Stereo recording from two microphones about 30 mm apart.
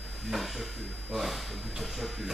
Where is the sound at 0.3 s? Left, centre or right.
Centre.